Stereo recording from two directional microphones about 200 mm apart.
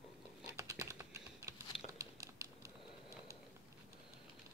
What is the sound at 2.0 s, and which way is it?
Computer keyboard, 15° right (ahead or behind).